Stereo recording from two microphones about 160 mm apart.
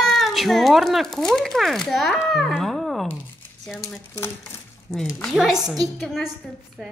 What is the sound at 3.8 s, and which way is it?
Speech, 15° left (ahead or behind).